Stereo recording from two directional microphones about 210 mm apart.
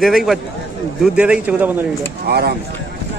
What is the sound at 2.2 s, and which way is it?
Speech, 50° right (ahead or behind).